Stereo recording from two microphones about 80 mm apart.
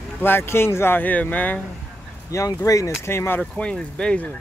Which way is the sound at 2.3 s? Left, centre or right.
Left.